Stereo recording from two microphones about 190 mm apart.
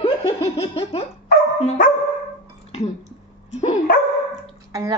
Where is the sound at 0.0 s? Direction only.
30° left (ahead or behind).